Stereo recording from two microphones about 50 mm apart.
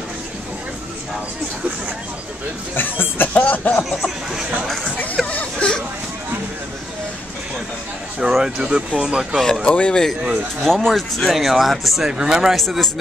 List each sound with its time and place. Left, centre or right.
2.7 s a sound: left
5.1 s a sound: left
8.2 s speech: centre
8.5 s speech: centre
9.4 s speech: centre
10.6 s speech: centre
11.2 s speech: centre
12.1 s speech: centre